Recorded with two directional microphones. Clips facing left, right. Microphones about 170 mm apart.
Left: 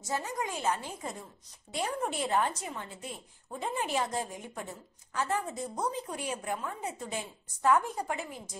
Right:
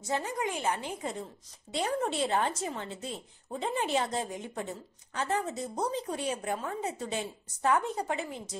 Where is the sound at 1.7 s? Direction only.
30° right (ahead or behind).